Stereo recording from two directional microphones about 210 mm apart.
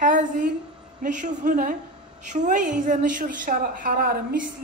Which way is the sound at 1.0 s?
40° right (ahead or behind).